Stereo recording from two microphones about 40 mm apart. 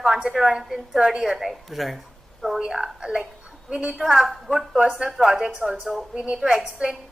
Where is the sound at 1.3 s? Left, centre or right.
Centre.